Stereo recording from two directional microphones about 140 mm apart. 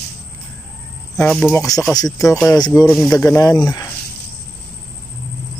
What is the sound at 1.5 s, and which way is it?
Speech, 25° left (ahead or behind).